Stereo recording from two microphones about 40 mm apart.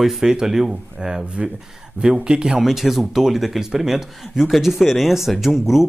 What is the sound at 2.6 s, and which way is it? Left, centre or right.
Speech, centre.